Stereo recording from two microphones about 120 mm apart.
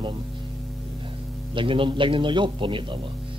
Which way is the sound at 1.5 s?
45° right (ahead or behind).